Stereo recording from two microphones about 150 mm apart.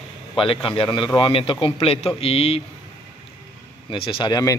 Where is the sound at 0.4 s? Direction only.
35° left (ahead or behind).